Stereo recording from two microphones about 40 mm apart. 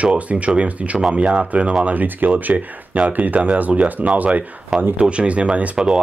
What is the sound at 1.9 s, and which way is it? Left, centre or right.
Speech, right.